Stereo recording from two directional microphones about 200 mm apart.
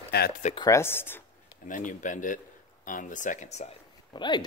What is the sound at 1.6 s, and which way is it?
Speech, 40° left (ahead or behind).